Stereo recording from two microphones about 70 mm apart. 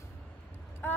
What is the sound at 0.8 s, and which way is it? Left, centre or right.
Speech, left.